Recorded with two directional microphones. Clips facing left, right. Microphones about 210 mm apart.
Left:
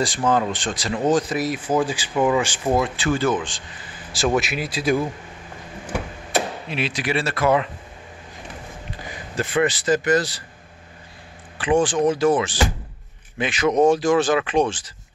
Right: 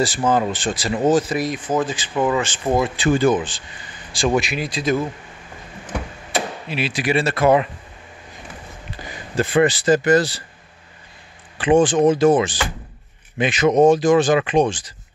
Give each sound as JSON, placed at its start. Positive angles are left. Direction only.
{"t": 0.0, "sound": "speech", "side_deg": -5}
{"t": 2.6, "sound": "speech", "side_deg": 0}
{"t": 3.0, "sound": "speech", "side_deg": -15}
{"t": 4.1, "sound": "speech", "side_deg": 5}
{"t": 6.3, "sound": "speech", "side_deg": -5}
{"t": 9.4, "sound": "speech", "side_deg": -35}
{"t": 11.5, "sound": "speech", "side_deg": -20}